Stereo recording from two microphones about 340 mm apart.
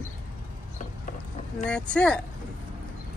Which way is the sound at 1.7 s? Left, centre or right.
Centre.